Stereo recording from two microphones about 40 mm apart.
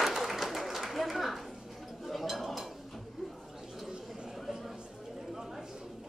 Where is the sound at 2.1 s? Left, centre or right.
Centre.